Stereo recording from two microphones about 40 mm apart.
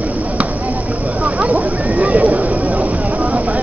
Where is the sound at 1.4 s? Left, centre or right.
Right.